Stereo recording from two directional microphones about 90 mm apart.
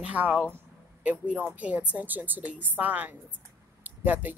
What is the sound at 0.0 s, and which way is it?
A woman's voice, 15° right (ahead or behind).